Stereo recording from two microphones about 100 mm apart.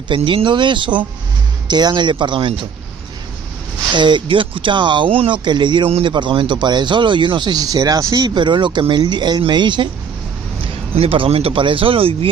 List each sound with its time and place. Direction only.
0.1 s speech: 60° right (ahead or behind)
3.9 s speech: 50° right (ahead or behind)
5.4 s speech: 50° right (ahead or behind)
8.4 s speech: 50° right (ahead or behind)
11.0 s speech: 75° right (ahead or behind)